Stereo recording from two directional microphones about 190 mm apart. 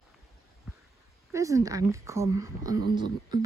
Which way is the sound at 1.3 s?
15° right (ahead or behind).